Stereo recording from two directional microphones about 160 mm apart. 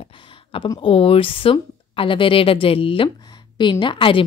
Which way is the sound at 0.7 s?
35° left (ahead or behind).